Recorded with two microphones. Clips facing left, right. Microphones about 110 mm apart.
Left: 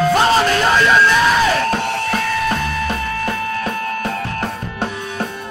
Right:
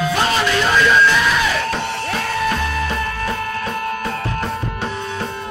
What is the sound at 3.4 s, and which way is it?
Music, 50° right (ahead or behind).